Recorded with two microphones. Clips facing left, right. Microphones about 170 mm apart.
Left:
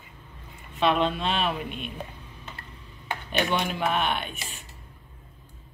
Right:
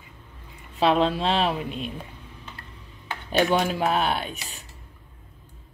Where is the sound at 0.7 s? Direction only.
30° right (ahead or behind).